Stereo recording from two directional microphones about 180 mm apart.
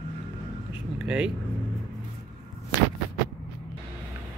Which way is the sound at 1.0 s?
5° right (ahead or behind).